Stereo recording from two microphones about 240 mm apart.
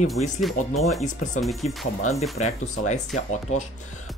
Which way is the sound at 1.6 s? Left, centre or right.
Left.